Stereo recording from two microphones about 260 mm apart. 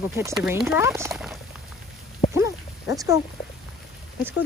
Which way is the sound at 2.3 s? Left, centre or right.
Centre.